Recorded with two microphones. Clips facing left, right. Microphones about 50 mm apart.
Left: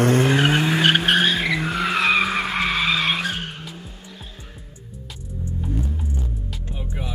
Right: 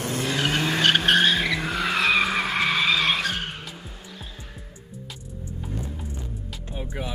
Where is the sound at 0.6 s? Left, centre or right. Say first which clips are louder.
Left 3 dB; centre.